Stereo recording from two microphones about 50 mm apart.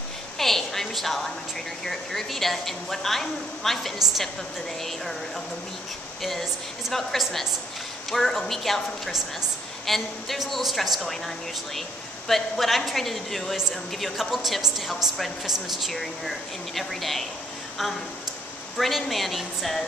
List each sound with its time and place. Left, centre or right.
0.4 s a sound: centre
1.9 s a woman's voice: centre
6.9 s a woman's voice: centre
18.8 s a woman's voice: centre